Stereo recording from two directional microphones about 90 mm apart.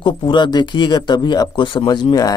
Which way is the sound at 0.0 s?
60° left (ahead or behind).